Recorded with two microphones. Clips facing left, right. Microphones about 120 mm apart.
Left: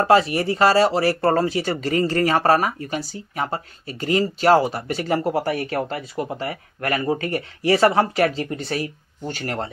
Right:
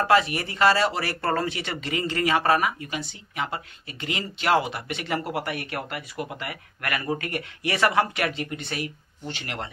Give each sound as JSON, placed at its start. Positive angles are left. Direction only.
{"t": 0.0, "sound": "speech", "side_deg": 35}